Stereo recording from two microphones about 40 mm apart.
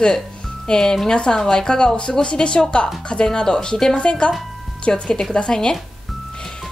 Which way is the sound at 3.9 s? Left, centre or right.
Left.